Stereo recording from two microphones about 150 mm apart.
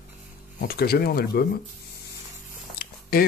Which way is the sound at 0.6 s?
90° left.